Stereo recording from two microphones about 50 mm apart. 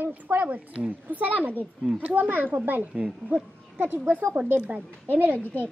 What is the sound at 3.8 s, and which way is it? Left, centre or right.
Speech, right.